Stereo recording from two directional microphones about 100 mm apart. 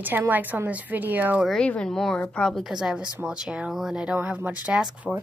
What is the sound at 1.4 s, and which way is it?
A woman's voice, 10° left (ahead or behind).